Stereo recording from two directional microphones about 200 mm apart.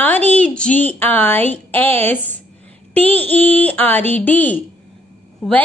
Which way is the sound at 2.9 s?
10° left (ahead or behind).